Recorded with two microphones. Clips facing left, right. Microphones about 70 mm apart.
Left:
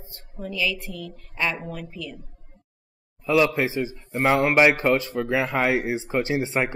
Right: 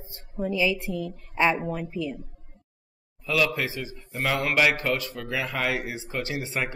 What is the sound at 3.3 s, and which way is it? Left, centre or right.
A man's voice, left.